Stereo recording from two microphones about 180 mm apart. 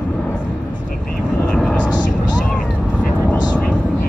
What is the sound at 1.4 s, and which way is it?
Vehicle, 5° left (ahead or behind).